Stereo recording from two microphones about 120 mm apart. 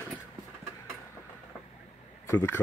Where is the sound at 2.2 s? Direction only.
20° left (ahead or behind).